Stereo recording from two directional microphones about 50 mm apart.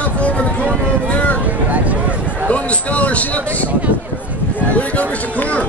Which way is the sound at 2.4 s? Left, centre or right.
Left.